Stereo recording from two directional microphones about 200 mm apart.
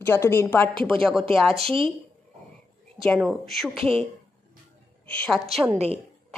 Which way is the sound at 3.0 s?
Centre (ahead or behind).